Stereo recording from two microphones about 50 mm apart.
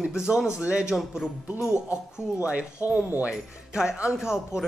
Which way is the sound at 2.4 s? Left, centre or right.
Right.